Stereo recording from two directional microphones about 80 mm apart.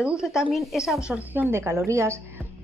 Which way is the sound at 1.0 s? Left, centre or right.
Centre.